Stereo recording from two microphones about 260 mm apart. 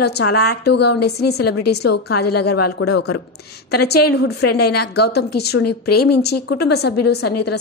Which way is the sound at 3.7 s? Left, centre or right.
Left.